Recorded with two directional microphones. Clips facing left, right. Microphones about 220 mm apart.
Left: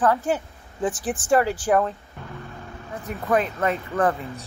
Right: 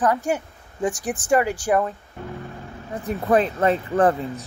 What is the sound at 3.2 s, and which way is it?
Speech, 30° right (ahead or behind).